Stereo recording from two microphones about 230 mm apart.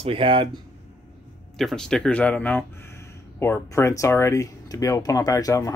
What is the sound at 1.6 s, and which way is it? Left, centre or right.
Speech, centre.